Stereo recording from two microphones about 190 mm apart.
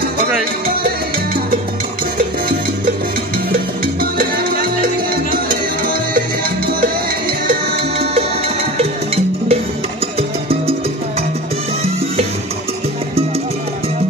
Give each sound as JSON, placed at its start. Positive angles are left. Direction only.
{"t": 4.0, "sound": "salsa music", "side_deg": -50}
{"t": 5.1, "sound": "music", "side_deg": -50}
{"t": 7.4, "sound": "music", "side_deg": -55}
{"t": 8.7, "sound": "music", "side_deg": -35}